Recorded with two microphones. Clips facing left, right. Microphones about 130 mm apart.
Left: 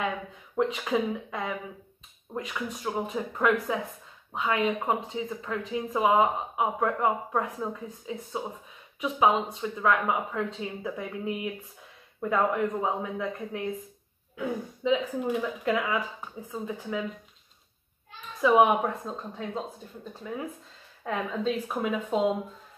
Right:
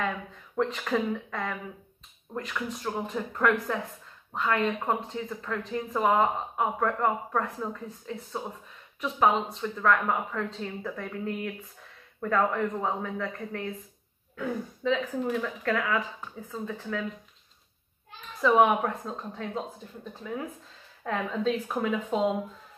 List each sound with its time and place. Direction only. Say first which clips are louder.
0.6 s speech: left 1 dB; 5° left (ahead or behind)
18.4 s a woman's voice: left 1 dB; 5° left (ahead or behind)
21.0 s a woman's voice: right 1 dB; 5° left (ahead or behind)